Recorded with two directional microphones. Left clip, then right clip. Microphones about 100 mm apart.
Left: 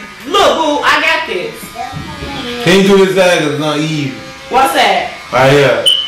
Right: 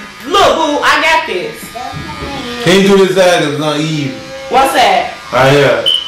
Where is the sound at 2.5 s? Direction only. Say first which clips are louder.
Even; 15° right (ahead or behind).